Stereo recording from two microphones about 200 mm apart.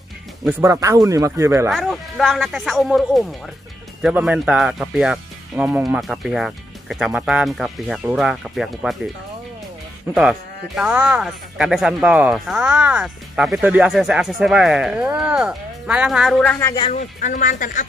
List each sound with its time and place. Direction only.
0.5 s speech: 10° right (ahead or behind)
1.7 s speech: centre (ahead or behind)
10.8 s speech: 5° right (ahead or behind)
16.9 s speech: 40° left (ahead or behind)